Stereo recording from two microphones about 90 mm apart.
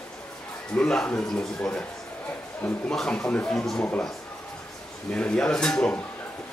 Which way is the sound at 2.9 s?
10° left (ahead or behind).